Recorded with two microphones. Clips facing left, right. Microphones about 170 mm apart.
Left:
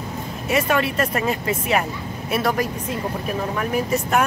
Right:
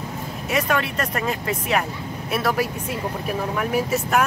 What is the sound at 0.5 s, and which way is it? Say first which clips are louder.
Speech: left 3 dB; 5° left (ahead or behind).